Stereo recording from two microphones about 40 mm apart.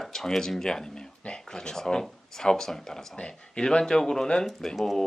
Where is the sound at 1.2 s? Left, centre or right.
Left.